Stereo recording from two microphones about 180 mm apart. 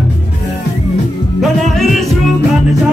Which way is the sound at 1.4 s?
Centre (ahead or behind).